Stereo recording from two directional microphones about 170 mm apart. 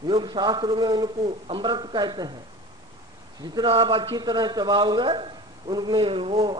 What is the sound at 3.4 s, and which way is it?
Speech, 25° right (ahead or behind).